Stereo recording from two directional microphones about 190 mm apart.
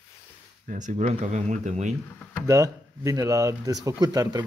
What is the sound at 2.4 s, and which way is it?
Speech, 15° right (ahead or behind).